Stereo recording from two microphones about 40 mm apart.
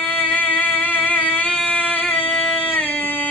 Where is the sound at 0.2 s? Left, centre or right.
Right.